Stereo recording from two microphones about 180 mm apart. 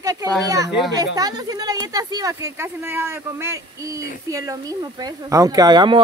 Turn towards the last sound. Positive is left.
turn(degrees=-25)  # may be behind; listen again after turning